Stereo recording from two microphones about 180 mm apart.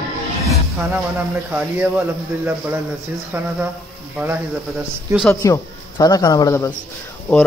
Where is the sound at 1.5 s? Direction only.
10° right (ahead or behind).